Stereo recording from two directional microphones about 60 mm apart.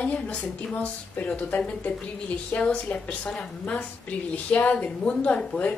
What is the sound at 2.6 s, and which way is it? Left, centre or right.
Speech, left.